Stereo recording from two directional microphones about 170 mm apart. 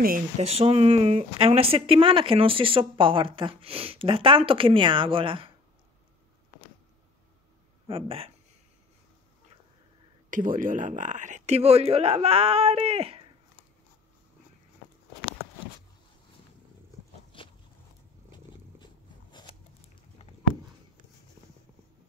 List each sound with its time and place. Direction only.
0.4 s speech: 35° right (ahead or behind)
7.8 s speech: 35° right (ahead or behind)
10.3 s speech: 50° right (ahead or behind); by 13.2 s 35° right (ahead or behind)
17.3 s a sound: 30° left (ahead or behind)